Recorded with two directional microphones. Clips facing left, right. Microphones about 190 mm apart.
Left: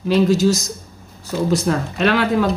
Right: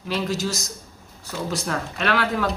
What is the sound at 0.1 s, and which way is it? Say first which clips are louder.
Speech: left 11 dB; 20° left (ahead or behind).